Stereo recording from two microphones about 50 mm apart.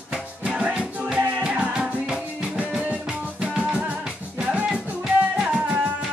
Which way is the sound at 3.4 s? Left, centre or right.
Centre.